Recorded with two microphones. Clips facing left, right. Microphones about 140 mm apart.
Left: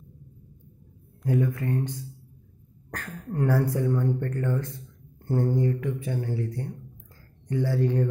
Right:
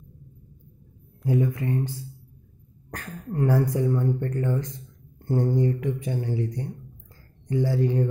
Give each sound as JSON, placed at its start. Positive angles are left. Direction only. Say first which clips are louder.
{"t": 1.2, "sound": "speech", "louder": "right 1 dB", "side_deg": -15}
{"t": 5.6, "sound": "mantra", "louder": "right 2 dB", "side_deg": -20}
{"t": 7.4, "sound": "speech", "louder": "right 2 dB", "side_deg": -10}